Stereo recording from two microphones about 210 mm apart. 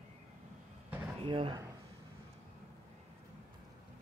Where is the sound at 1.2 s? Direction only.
25° right (ahead or behind).